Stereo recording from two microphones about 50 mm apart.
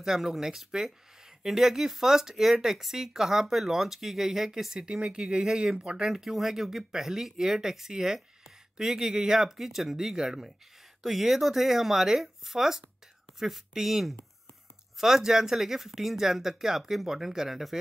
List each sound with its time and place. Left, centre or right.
0.0 s speech: centre